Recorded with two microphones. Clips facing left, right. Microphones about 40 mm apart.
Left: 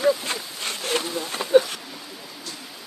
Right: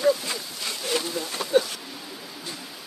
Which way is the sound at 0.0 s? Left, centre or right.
Left.